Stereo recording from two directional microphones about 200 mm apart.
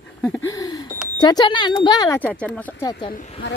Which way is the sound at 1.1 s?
20° left (ahead or behind).